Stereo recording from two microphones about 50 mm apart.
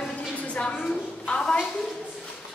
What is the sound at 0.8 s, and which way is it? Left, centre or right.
Speech, centre.